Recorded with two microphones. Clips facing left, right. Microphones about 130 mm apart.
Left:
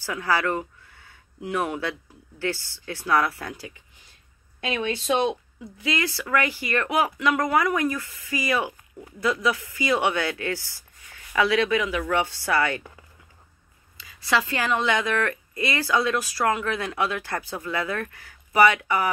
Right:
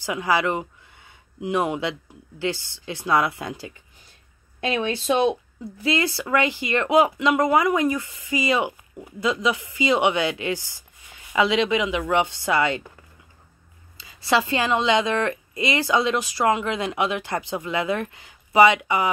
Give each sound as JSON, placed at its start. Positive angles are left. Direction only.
{"t": 0.0, "sound": "speech", "side_deg": -15}
{"t": 4.6, "sound": "speech", "side_deg": -35}
{"t": 13.9, "sound": "speech", "side_deg": -30}